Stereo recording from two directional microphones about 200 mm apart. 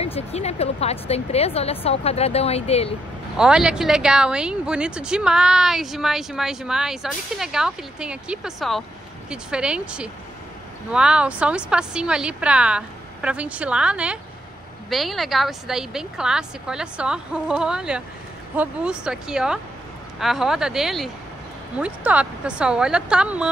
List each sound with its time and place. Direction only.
0.0 s a woman's voice: 30° left (ahead or behind)
3.3 s speech: 5° right (ahead or behind)